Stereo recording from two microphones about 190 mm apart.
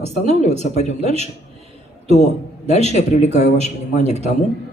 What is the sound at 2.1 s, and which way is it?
A man's voice, 35° left (ahead or behind).